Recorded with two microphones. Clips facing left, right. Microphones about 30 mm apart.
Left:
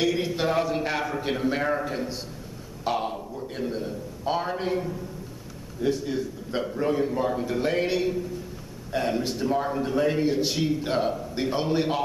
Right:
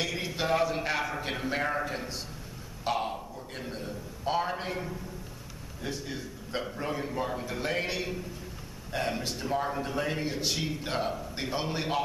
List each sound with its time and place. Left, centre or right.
0.0 s a sound: centre
2.8 s a man's voice: centre
5.8 s a man's voice: centre